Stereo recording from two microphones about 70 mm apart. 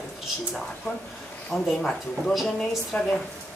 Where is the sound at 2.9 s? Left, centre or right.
Centre.